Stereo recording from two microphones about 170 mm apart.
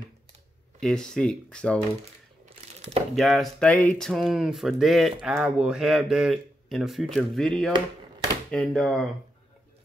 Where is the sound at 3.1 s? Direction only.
Centre (ahead or behind).